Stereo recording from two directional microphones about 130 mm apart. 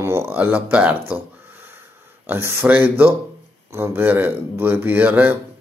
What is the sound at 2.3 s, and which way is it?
Speech, 20° right (ahead or behind).